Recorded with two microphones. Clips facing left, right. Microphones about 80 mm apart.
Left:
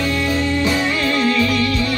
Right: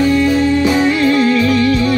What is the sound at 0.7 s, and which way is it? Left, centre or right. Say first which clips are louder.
Music: right 7 dB; centre.